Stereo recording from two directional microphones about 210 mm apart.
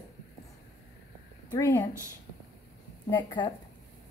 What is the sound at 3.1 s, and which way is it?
Speech, 20° left (ahead or behind).